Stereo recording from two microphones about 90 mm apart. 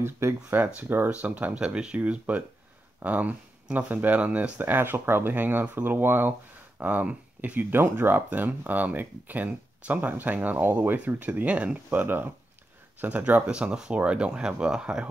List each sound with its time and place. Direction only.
0.0 s speech: 25° right (ahead or behind); by 15.0 s 10° right (ahead or behind)